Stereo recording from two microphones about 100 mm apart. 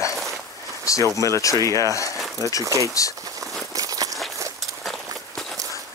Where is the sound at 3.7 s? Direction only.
35° right (ahead or behind).